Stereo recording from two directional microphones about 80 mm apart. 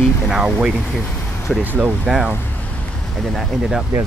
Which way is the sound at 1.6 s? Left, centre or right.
Right.